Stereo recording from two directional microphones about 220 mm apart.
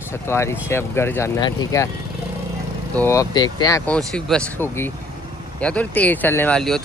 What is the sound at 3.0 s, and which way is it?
Speech, 15° left (ahead or behind).